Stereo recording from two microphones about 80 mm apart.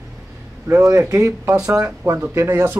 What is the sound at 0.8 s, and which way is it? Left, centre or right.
Speech, right.